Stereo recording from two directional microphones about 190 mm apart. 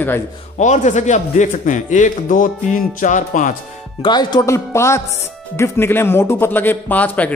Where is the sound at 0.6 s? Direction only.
40° left (ahead or behind).